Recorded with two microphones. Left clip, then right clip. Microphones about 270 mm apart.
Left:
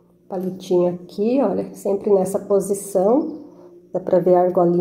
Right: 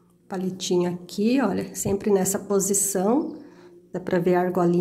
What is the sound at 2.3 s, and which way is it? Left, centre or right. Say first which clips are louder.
Speech: left 5 dB; right.